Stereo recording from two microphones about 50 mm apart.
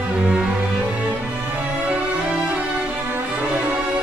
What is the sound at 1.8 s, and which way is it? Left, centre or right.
Music, right.